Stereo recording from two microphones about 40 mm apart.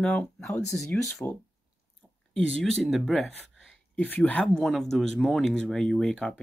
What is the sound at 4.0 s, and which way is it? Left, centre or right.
Speech, left.